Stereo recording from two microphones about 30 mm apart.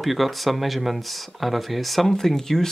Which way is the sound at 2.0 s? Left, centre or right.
Centre.